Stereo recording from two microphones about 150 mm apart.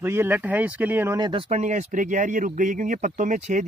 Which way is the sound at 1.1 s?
30° right (ahead or behind).